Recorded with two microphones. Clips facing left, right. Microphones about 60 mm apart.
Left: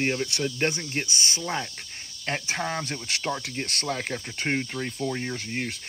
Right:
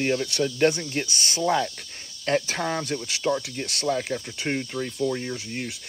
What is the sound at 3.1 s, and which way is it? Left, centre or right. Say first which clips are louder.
Speech: right 3 dB; left.